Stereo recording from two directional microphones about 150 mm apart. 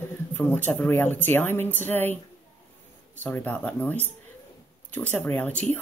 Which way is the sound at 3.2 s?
10° left (ahead or behind).